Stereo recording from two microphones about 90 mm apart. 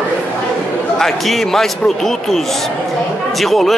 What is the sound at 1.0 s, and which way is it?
A man's voice, 5° left (ahead or behind).